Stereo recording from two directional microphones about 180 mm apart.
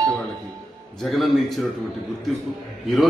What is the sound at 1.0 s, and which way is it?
Speech, centre (ahead or behind).